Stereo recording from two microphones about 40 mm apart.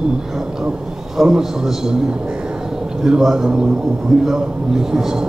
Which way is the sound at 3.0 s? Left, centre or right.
Centre.